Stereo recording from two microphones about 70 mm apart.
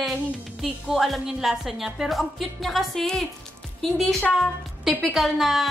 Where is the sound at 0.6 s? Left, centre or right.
Centre.